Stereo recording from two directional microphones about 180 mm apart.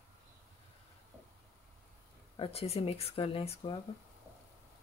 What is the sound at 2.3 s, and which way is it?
Speech, 30° left (ahead or behind).